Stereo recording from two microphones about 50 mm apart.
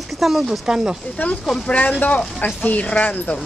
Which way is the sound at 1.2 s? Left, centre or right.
Left.